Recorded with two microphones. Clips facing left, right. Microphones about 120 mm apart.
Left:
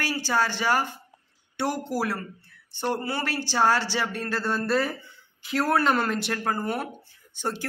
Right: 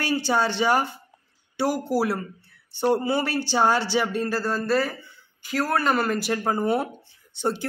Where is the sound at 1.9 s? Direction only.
10° right (ahead or behind).